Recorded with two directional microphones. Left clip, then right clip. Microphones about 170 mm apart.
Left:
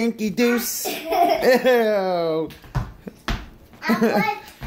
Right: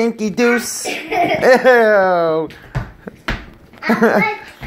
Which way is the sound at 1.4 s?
5° left (ahead or behind).